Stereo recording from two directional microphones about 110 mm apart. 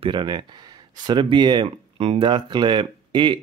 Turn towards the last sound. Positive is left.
turn(degrees=-45)  # may be behind; listen again after turning